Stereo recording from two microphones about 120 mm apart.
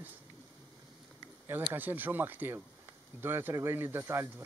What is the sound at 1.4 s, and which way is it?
Speech, 15° right (ahead or behind).